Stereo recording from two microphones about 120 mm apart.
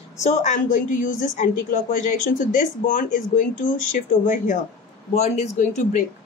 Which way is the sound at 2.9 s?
90° left.